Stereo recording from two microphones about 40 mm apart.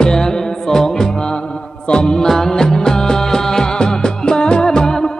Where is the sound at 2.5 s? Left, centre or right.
Centre.